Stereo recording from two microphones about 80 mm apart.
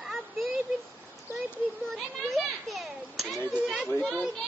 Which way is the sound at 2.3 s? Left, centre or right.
Centre.